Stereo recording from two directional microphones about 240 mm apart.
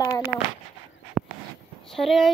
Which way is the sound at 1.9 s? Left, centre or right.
Centre.